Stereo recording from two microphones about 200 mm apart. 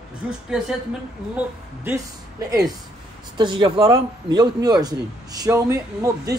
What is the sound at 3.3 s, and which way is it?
A man's voice, 25° right (ahead or behind).